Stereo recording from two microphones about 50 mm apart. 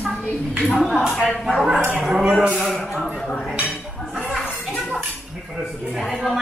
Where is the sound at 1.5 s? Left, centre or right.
Centre.